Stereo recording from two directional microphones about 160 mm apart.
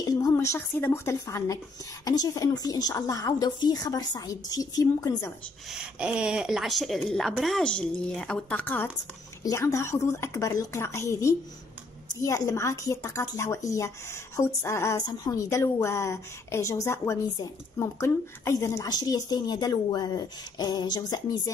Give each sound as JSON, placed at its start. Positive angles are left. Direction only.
{"t": 0.0, "sound": "a woman's voice", "side_deg": 20}
{"t": 5.7, "sound": "a woman's voice", "side_deg": -5}